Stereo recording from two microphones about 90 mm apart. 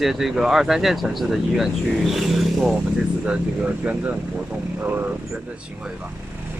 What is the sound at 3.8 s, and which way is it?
Speech, 20° right (ahead or behind).